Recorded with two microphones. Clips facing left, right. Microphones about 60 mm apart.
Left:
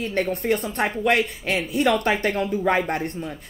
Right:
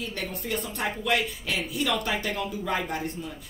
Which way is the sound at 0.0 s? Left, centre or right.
Left.